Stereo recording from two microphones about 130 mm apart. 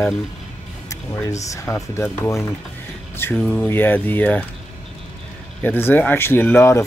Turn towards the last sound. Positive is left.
turn(degrees=20)  # may be behind; listen again after turning